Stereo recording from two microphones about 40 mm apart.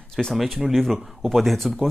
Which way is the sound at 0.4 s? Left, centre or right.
Centre.